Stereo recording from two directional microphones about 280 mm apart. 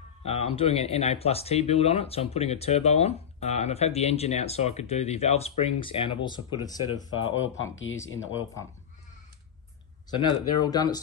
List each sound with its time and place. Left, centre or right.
0.2 s a sound: left
0.6 s speech: left
7.1 s speech: left
10.2 s speech: centre